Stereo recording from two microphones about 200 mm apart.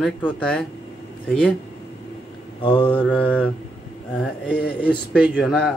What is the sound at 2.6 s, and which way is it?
Mantra, 25° left (ahead or behind).